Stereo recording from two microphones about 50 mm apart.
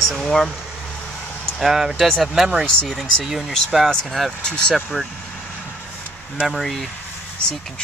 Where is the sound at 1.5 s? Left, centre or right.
Centre.